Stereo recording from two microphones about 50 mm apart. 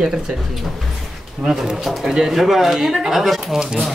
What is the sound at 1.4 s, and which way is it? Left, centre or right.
A man's voice, centre.